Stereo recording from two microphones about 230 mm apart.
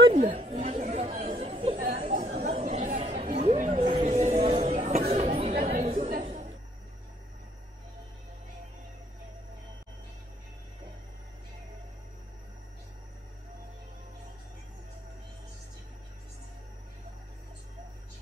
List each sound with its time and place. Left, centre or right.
0.0 s chatter: right